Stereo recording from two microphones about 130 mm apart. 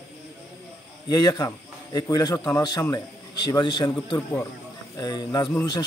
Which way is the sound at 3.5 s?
35° left (ahead or behind).